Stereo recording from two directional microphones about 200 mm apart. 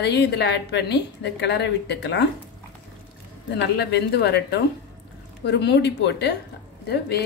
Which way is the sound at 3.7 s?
55° left (ahead or behind).